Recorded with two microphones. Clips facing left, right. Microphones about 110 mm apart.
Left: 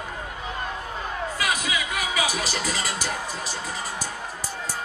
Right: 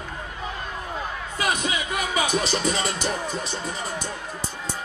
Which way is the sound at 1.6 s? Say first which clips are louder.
Right 1 dB; 25° right (ahead or behind).